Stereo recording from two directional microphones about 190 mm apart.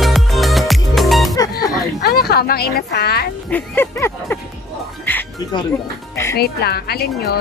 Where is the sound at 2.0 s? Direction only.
55° left (ahead or behind).